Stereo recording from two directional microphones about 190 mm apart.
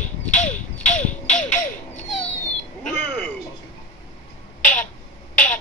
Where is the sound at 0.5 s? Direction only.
5° left (ahead or behind).